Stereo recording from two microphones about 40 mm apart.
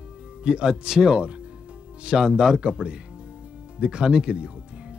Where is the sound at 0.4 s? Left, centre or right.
Right.